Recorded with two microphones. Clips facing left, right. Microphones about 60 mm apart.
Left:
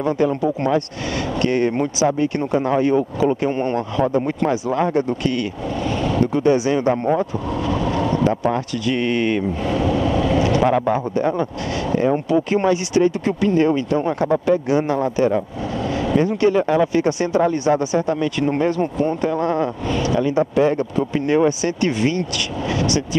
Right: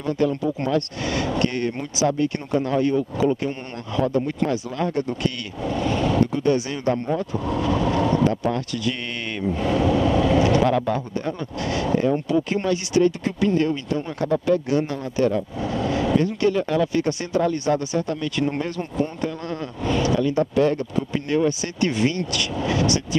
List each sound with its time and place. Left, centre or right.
0.0 s speech: centre
7.9 s a sound: left
8.2 s speech: centre
9.7 s vehicle: left
11.9 s speech: left